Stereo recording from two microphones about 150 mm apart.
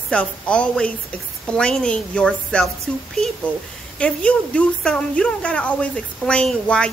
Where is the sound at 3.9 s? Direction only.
10° left (ahead or behind).